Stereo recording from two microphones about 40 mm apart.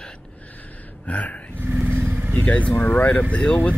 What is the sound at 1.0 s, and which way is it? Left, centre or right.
Speech, left.